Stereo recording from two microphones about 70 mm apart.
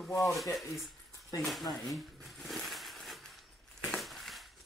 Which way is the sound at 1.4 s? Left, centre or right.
Centre.